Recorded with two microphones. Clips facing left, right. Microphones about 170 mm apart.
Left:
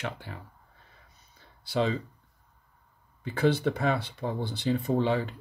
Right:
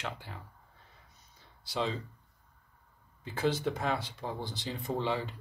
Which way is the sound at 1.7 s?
70° left (ahead or behind).